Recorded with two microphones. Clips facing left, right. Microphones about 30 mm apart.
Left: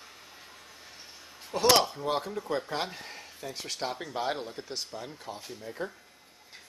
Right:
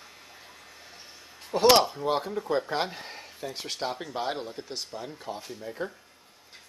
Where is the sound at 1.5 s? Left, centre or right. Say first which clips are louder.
Right 4 dB; centre.